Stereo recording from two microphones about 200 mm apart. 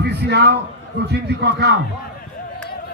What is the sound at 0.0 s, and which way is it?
A man's voice, 55° right (ahead or behind).